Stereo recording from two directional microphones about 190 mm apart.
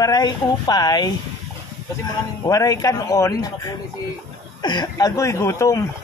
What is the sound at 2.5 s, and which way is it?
Speech, 20° left (ahead or behind).